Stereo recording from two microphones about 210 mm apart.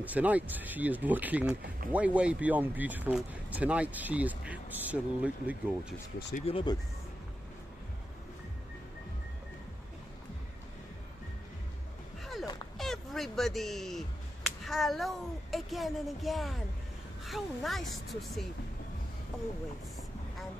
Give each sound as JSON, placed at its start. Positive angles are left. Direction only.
{"t": 0.0, "sound": "speech", "side_deg": -5}
{"t": 6.4, "sound": "speech", "side_deg": 25}
{"t": 12.7, "sound": "finger snapping", "side_deg": 0}
{"t": 17.2, "sound": "speech", "side_deg": 0}